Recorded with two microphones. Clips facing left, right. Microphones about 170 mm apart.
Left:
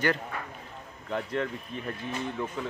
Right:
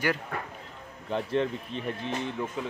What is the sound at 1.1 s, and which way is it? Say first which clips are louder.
Speech: right 3 dB; 30° right (ahead or behind).